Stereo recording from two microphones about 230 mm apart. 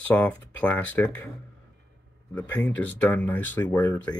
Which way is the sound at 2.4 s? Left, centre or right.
Centre.